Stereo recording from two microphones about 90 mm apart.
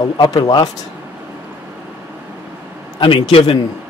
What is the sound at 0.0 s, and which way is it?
Speech, 50° left (ahead or behind).